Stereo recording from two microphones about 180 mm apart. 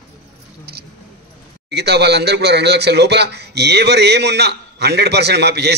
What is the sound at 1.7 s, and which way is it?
Speech, 65° right (ahead or behind).